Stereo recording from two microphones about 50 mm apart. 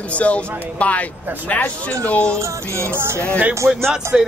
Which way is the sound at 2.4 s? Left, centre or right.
Right.